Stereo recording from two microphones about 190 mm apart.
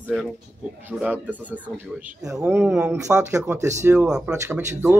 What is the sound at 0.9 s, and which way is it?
Speech, 5° right (ahead or behind).